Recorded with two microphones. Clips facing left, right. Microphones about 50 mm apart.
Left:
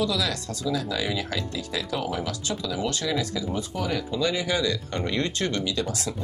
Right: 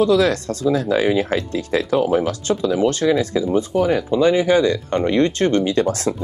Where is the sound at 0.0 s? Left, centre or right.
Right.